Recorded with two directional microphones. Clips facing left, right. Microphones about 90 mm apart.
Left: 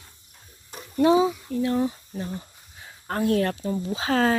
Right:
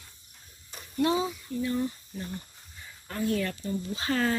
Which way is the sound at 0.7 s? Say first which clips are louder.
Left 8 dB; 45° left (ahead or behind).